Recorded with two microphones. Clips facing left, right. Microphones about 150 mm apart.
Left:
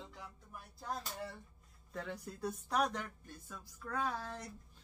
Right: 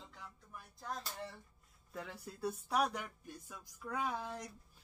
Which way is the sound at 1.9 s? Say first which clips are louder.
Left 3 dB; 5° right (ahead or behind).